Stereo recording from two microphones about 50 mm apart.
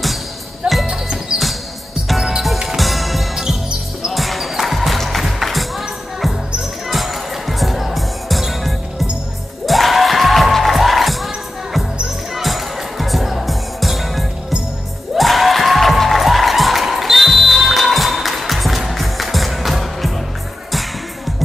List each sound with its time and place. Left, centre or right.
0.6 s music: centre
2.0 s music: centre